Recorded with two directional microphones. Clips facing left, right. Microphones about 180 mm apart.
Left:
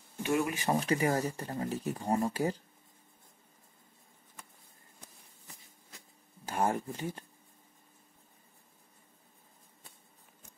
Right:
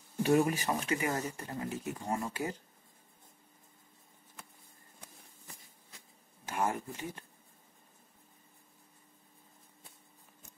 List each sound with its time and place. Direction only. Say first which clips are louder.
0.2 s speech: right 4 dB; 40° right (ahead or behind)
0.7 s speech: left 4 dB; 35° left (ahead or behind)
6.4 s speech: left 3 dB; 35° left (ahead or behind)